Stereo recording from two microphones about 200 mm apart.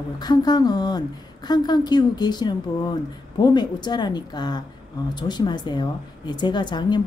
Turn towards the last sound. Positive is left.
turn(degrees=20)  # may be behind; listen again after turning